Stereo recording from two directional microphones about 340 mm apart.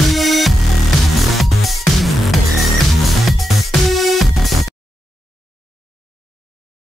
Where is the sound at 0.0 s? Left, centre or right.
Centre.